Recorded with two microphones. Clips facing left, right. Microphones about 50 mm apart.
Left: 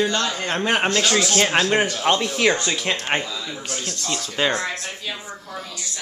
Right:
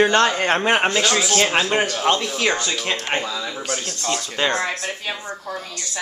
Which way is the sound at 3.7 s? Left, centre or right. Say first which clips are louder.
Right 1 dB; right.